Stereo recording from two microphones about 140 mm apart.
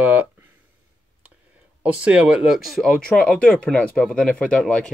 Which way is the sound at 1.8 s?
10° right (ahead or behind).